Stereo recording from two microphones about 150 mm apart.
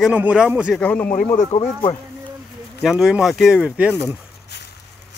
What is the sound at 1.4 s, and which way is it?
Speech, 40° left (ahead or behind).